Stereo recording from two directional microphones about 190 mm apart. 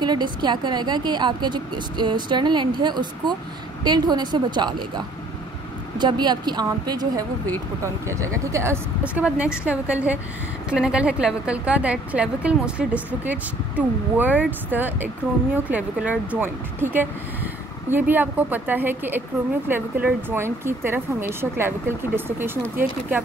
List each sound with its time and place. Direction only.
0.0 s a woman's voice: 25° right (ahead or behind)